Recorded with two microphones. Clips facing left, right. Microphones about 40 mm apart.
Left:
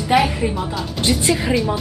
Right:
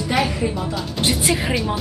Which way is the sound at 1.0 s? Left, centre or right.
Centre.